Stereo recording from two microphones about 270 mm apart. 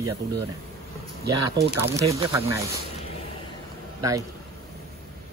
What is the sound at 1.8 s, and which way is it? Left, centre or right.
Speech, centre.